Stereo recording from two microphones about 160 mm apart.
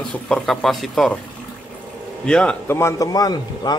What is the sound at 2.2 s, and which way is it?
Speech, 5° left (ahead or behind).